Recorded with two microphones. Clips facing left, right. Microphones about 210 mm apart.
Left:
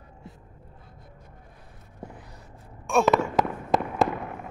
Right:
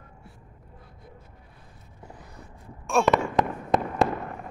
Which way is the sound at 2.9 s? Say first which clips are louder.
Left 1 dB; centre (ahead or behind).